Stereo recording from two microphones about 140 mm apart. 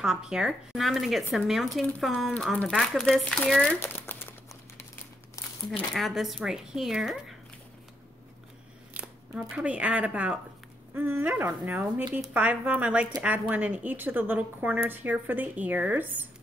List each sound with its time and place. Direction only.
0.0 s speech: 5° right (ahead or behind)
3.8 s a sound: 15° left (ahead or behind)
5.9 s speech: centre (ahead or behind)
8.9 s a woman's voice: 5° right (ahead or behind)